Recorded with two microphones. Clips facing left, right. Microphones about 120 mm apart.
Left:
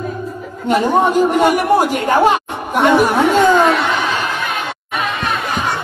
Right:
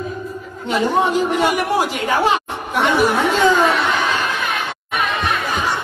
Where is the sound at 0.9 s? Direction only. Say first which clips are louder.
Left 4 dB; 50° left (ahead or behind).